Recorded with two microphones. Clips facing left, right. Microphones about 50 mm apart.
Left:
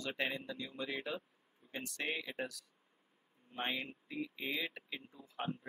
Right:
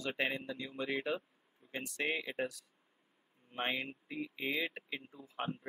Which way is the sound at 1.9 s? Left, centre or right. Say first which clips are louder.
Right 4 dB; centre.